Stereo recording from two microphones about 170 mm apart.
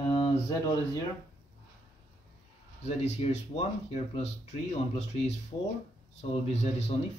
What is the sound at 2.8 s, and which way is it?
Speech, 40° left (ahead or behind).